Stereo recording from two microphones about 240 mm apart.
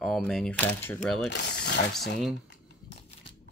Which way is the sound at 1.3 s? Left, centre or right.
Left.